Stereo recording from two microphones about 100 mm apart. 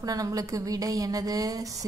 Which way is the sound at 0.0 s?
35° right (ahead or behind).